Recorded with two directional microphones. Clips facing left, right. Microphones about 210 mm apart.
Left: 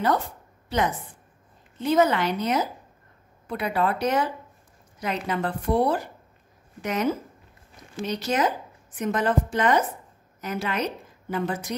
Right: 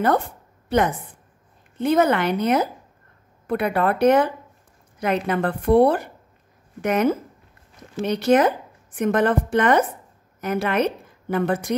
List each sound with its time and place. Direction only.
0.0 s a woman's voice: 55° right (ahead or behind)